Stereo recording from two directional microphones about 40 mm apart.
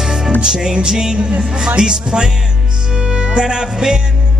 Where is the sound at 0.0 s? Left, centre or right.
Centre.